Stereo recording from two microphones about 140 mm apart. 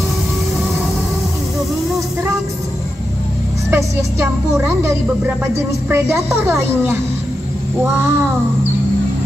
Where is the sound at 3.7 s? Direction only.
20° right (ahead or behind).